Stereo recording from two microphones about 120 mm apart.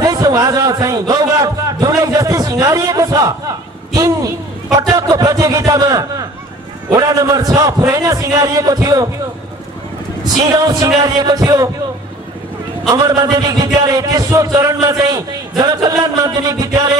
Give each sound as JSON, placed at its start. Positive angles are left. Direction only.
{"t": 0.0, "sound": "a man's voice", "side_deg": -30}
{"t": 10.2, "sound": "a man's voice", "side_deg": -30}
{"t": 12.8, "sound": "a man's voice", "side_deg": -30}